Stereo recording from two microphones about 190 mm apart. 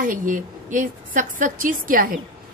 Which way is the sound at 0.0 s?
45° right (ahead or behind).